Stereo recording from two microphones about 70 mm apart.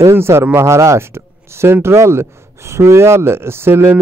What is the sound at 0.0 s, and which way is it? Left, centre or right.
Speech, right.